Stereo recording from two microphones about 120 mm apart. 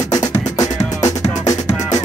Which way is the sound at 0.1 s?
30° left (ahead or behind).